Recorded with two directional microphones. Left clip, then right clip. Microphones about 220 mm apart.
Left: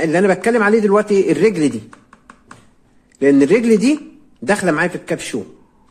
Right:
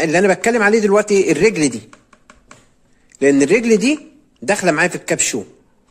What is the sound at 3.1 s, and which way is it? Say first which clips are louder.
Speech: left 1 dB; 20° right (ahead or behind).